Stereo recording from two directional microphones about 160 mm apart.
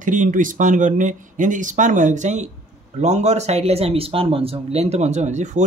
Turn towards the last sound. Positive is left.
turn(degrees=-45)  # may be behind; listen again after turning